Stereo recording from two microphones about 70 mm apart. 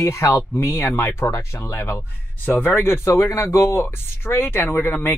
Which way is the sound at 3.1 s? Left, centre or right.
Left.